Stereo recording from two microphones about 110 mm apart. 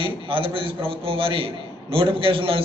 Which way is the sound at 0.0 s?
55° right (ahead or behind).